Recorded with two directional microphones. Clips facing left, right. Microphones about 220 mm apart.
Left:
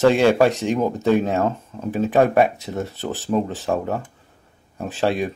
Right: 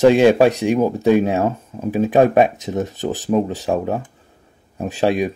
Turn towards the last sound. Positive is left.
turn(degrees=-15)  # may be behind; listen again after turning